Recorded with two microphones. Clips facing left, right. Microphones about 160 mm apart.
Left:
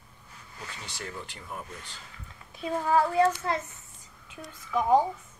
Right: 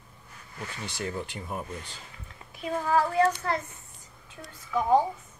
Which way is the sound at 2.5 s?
25° left (ahead or behind).